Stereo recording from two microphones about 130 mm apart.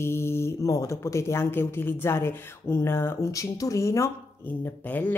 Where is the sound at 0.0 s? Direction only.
20° left (ahead or behind).